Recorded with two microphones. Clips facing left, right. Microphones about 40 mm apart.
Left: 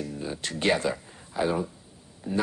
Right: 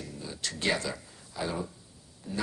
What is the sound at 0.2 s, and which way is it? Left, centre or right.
A man's voice, left.